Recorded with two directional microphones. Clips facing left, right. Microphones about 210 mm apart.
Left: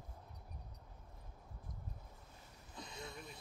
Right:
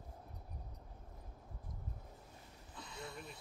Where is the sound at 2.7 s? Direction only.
20° left (ahead or behind).